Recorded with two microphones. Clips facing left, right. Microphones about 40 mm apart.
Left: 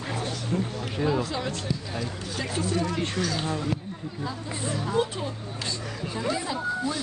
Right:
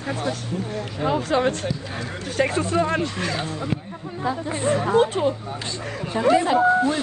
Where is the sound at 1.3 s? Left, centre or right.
Right.